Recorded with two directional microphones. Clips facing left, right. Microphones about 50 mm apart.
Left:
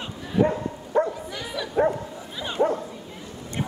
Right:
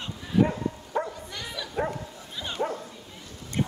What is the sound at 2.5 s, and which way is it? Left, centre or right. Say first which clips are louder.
Bow-wow: left 7 dB; centre.